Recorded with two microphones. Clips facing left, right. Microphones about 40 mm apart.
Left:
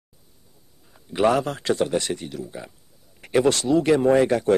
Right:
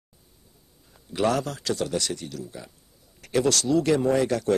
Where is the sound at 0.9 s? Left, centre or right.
Left.